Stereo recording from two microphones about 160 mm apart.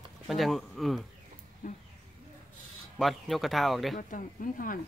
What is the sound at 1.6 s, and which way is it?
Speech, 55° left (ahead or behind).